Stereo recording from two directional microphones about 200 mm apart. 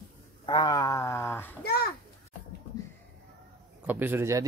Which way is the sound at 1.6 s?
50° left (ahead or behind).